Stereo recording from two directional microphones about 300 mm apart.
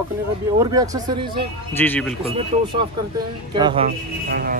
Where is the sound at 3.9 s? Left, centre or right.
Right.